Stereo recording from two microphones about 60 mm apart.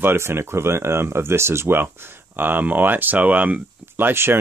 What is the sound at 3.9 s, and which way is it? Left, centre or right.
Speech, right.